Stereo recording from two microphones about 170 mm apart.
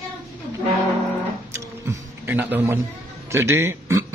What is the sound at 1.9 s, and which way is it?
A man's voice, 10° right (ahead or behind).